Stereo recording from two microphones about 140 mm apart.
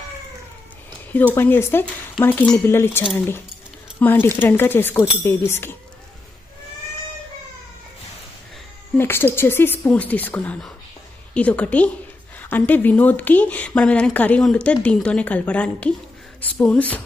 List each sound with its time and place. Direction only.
1.3 s speech: 15° left (ahead or behind)
8.9 s speech: 15° left (ahead or behind)